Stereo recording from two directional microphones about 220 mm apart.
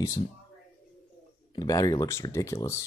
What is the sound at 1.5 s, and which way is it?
Speech, 15° left (ahead or behind).